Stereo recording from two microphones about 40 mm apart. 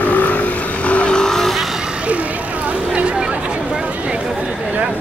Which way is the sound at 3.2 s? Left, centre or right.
Right.